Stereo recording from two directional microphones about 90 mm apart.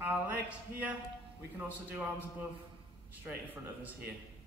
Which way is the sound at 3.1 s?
20° right (ahead or behind).